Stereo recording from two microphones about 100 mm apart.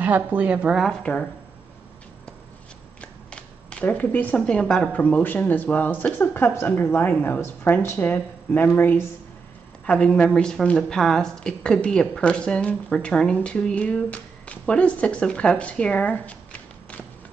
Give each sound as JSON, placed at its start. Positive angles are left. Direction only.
{"t": 0.0, "sound": "speech", "side_deg": -15}
{"t": 3.0, "sound": "a woman's voice", "side_deg": 10}